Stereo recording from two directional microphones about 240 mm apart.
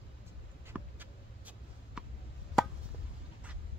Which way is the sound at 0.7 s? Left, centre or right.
Centre.